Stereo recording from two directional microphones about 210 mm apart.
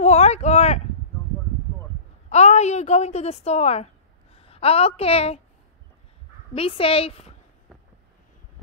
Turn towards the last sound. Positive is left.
turn(degrees=25)  # may be behind; listen again after turning